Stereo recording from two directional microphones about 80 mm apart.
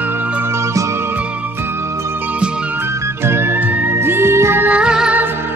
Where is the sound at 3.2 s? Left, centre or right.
Right; by 5.2 s centre.